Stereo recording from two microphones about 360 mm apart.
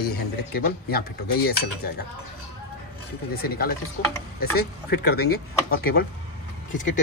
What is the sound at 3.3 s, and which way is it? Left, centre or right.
Speech, left.